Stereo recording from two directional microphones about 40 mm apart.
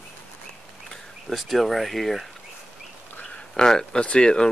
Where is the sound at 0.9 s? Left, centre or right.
Centre.